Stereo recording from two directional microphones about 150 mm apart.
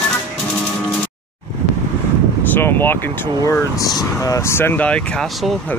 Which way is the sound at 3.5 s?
25° left (ahead or behind).